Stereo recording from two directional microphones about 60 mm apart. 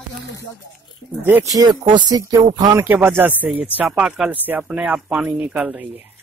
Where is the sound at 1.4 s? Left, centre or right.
Right.